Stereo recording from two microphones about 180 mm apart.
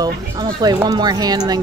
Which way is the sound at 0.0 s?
20° right (ahead or behind).